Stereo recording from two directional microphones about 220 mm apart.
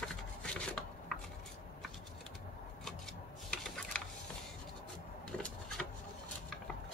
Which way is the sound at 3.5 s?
5° left (ahead or behind).